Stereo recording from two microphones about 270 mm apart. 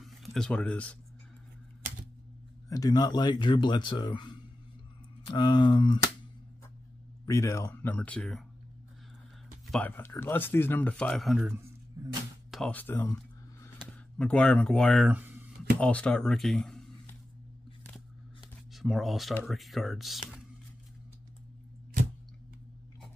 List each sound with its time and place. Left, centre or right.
0.0 s speech: centre
2.7 s speech: centre
7.2 s speech: centre
9.7 s speech: centre
15.8 s speech: centre
18.7 s speech: centre